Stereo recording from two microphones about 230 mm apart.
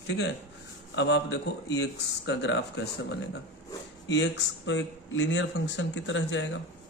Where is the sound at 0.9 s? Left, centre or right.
Left.